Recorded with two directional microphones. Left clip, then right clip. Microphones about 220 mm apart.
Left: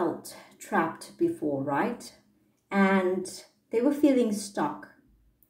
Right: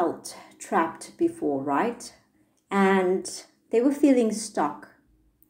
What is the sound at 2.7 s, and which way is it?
Speech, 35° right (ahead or behind).